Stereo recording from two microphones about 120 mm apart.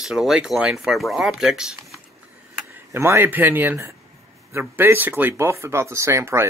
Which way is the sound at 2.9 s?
20° right (ahead or behind).